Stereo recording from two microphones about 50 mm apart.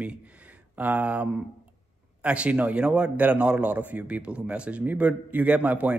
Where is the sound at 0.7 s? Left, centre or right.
Right.